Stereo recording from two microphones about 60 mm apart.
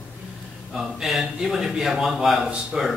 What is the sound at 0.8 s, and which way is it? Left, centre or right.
A man's voice, centre.